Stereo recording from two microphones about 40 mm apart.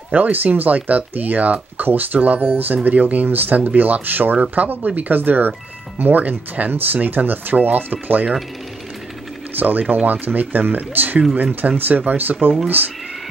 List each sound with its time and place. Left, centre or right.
0.1 s speech: right
3.3 s speech: right
9.6 s speech: right